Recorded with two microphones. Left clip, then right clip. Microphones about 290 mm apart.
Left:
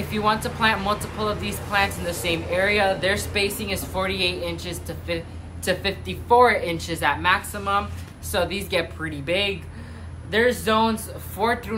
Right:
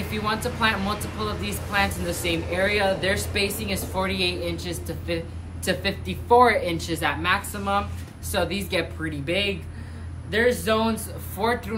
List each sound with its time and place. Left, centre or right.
0.1 s a woman's voice: centre